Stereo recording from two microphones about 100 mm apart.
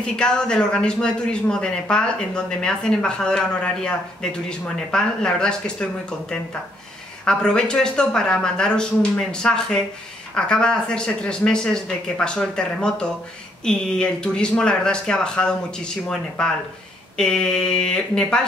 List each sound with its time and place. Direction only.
0.0 s a man's voice: 10° left (ahead or behind)
7.2 s a man's voice: 10° left (ahead or behind)